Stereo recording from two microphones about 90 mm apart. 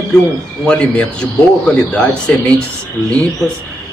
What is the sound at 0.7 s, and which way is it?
Speech, 10° left (ahead or behind).